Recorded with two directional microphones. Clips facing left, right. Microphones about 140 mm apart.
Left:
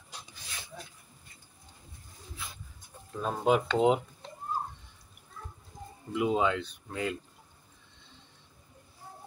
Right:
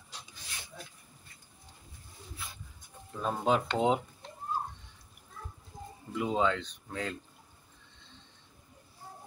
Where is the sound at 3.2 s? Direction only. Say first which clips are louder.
Left 2 dB; 5° left (ahead or behind).